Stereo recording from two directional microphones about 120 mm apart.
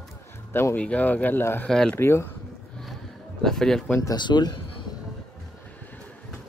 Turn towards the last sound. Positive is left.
turn(degrees=35)  # may be behind; listen again after turning